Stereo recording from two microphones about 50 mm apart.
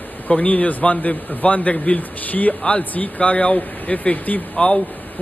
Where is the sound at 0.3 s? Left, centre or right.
Left.